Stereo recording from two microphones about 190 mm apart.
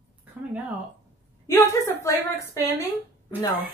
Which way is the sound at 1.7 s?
15° left (ahead or behind).